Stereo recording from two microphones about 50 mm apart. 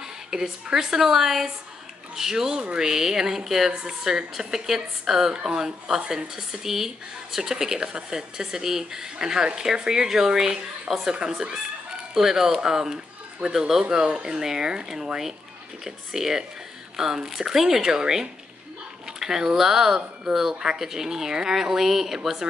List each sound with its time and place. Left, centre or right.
0.0 s a woman's voice: centre
2.9 s a woman's voice: centre